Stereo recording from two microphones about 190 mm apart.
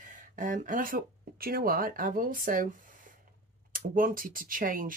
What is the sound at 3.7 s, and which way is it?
Speech, 45° right (ahead or behind).